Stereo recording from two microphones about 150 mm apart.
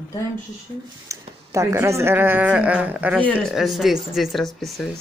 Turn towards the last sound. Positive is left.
turn(degrees=0)  # may be behind; listen again after turning